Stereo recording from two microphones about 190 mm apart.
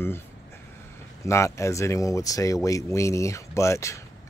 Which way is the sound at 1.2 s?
15° left (ahead or behind).